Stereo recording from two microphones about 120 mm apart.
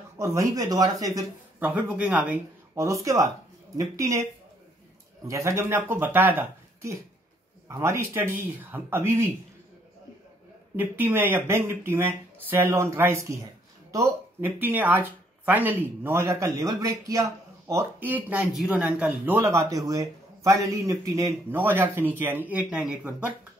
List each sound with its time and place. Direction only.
0.2 s speech: 25° right (ahead or behind)
1.8 s a man's voice: 10° right (ahead or behind)
2.7 s speech: 25° right (ahead or behind)
10.8 s speech: 15° right (ahead or behind)
18.0 s a man's voice: 15° right (ahead or behind)
21.5 s a man's voice: 15° right (ahead or behind)